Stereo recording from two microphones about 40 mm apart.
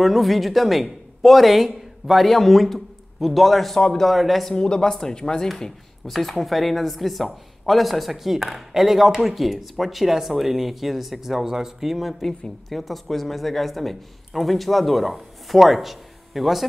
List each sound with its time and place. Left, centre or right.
0.0 s speech: centre
4.5 s speech: centre
5.5 s speech: centre